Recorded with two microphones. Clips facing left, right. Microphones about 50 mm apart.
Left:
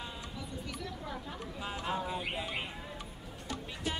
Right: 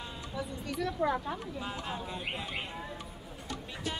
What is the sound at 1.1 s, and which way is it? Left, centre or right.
Speech, right.